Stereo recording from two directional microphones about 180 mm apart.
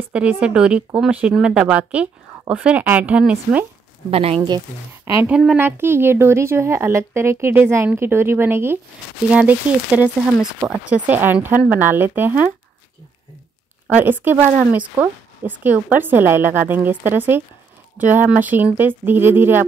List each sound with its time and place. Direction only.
0.1 s a woman's voice: 5° right (ahead or behind)
4.1 s speech: 35° right (ahead or behind)
5.0 s a woman's voice: 10° right (ahead or behind)
13.8 s a woman's voice: 10° right (ahead or behind)